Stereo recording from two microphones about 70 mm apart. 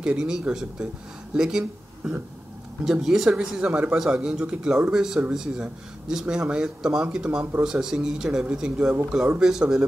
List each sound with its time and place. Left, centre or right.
0.0 s speech: centre